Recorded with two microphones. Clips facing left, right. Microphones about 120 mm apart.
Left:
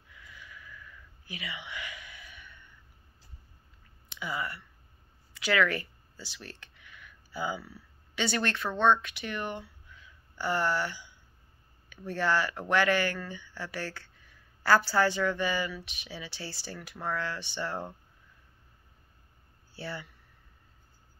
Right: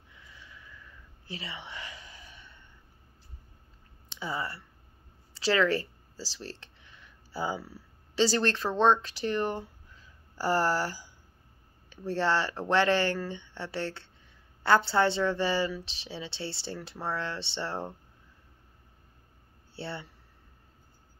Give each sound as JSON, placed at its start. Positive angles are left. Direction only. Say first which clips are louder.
{"t": 0.1, "sound": "sniff", "louder": "left 2 dB", "side_deg": -25}
{"t": 4.1, "sound": "speech", "louder": "right 1 dB", "side_deg": -30}
{"t": 19.7, "sound": "speech", "louder": "right 1 dB", "side_deg": -25}